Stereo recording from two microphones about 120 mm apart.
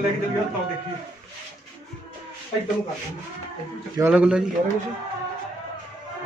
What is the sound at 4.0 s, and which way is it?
Speech, 15° right (ahead or behind).